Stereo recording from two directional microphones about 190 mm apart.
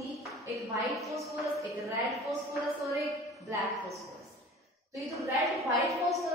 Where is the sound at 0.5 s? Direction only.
15° right (ahead or behind).